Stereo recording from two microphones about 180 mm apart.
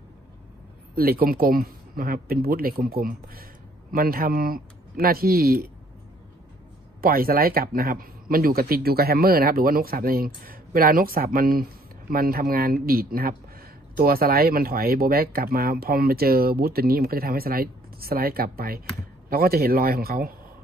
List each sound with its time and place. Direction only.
0.9 s a man's voice: 55° right (ahead or behind)
7.0 s a man's voice: 55° right (ahead or behind)